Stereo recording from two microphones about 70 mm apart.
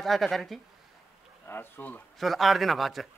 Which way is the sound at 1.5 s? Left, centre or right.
Left.